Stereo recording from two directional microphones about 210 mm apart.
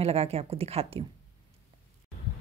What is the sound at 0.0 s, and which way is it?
Speech, 30° right (ahead or behind).